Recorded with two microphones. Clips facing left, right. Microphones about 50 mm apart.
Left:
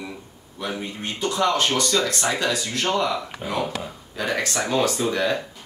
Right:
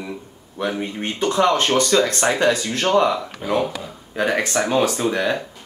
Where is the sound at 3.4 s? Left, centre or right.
Centre.